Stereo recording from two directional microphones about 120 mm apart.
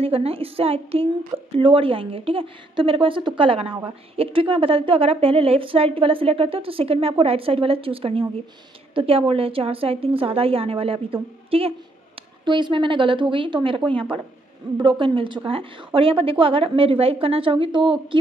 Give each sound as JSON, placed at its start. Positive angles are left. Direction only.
{"t": 0.0, "sound": "a woman's voice", "side_deg": -55}
{"t": 12.4, "sound": "a woman's voice", "side_deg": -40}